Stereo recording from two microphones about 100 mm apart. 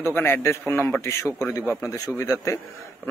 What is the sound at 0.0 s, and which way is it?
A man's voice, 20° left (ahead or behind).